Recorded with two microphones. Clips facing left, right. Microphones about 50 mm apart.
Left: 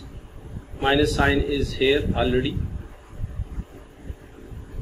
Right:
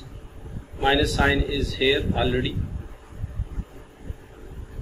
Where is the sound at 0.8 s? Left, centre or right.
Centre.